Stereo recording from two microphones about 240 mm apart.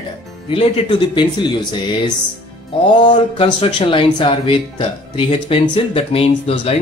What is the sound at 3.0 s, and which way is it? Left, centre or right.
Speech, left.